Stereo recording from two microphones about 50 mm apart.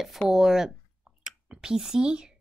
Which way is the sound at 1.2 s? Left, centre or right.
Centre.